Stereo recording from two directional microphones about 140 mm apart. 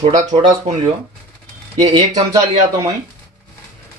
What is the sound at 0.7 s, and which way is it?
Speech, 50° right (ahead or behind).